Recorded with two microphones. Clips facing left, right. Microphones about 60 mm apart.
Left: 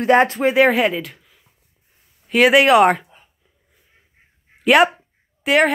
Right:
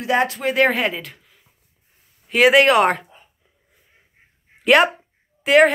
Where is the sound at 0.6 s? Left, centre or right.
Centre.